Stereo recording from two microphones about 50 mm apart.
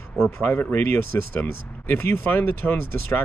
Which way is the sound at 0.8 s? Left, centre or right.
Left.